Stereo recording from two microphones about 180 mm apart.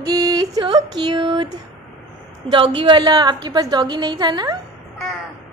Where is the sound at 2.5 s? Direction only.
30° right (ahead or behind).